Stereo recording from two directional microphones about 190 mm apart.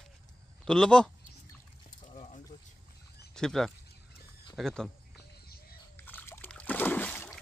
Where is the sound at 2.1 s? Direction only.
35° left (ahead or behind).